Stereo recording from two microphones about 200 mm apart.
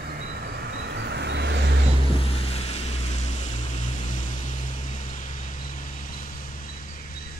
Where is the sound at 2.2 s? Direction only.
30° left (ahead or behind).